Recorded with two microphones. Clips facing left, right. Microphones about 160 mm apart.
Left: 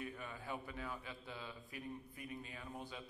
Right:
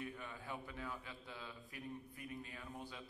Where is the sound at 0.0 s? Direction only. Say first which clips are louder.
Left 1 dB; 5° left (ahead or behind).